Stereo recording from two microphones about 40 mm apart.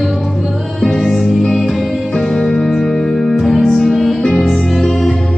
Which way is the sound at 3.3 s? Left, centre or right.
Centre.